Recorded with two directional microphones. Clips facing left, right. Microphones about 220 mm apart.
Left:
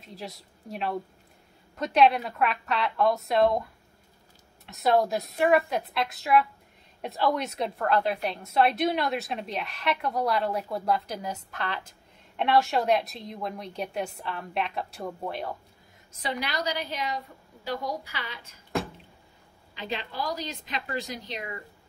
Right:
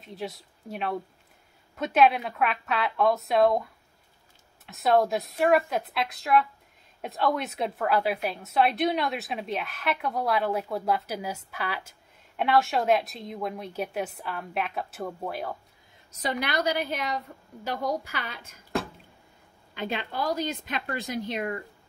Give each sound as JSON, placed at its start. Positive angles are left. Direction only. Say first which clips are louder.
{"t": 0.0, "sound": "a woman's voice", "louder": "right 4 dB", "side_deg": 0}
{"t": 4.6, "sound": "a woman's voice", "louder": "right 1 dB", "side_deg": 0}
{"t": 16.1, "sound": "a woman's voice", "louder": "right 3 dB", "side_deg": -45}
{"t": 19.7, "sound": "a woman's voice", "louder": "right 3 dB", "side_deg": -55}